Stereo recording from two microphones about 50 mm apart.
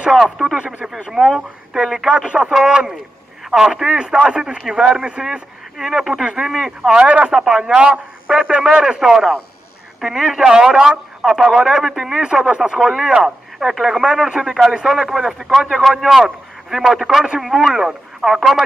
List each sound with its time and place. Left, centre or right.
0.1 s a man's voice: centre
6.9 s speech: right; by 12.2 s centre
12.2 s a man's voice: centre